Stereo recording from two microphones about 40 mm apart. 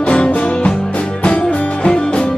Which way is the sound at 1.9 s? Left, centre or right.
Left.